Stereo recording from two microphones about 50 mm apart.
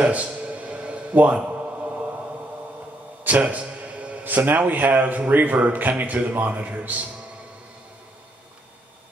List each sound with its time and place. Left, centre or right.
0.0 s a sound: right
3.3 s music: right
4.2 s a man's voice: right